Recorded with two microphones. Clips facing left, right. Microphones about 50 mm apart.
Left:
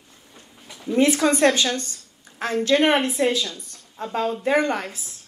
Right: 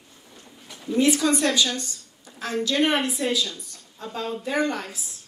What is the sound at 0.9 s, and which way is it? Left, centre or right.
A woman's voice, left.